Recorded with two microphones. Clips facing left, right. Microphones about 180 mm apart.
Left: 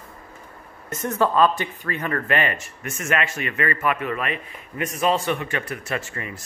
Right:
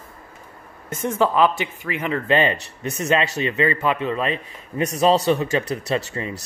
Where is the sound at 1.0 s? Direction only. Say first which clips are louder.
Right 1 dB; 15° right (ahead or behind).